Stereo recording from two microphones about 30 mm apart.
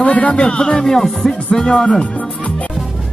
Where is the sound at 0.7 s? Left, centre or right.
Centre.